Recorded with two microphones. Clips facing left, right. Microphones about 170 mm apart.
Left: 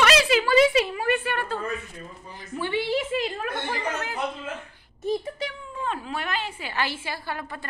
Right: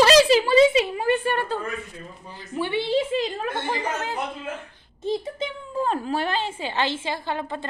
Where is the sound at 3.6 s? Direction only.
25° right (ahead or behind).